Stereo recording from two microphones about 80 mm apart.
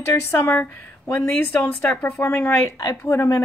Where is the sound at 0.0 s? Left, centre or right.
Left.